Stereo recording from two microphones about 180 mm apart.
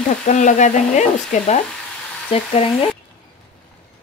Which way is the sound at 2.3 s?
30° left (ahead or behind).